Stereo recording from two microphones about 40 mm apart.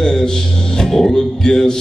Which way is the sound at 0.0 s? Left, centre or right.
Centre.